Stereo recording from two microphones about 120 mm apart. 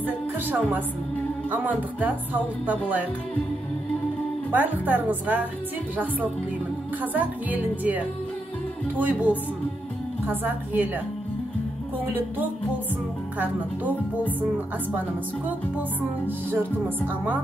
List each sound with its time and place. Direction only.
0.5 s music: 15° right (ahead or behind)
4.5 s music: 15° right (ahead or behind)
7.0 s music: 15° right (ahead or behind)
17.1 s music: 10° right (ahead or behind)